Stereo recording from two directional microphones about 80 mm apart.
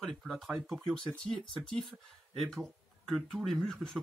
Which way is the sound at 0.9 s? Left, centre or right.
Centre.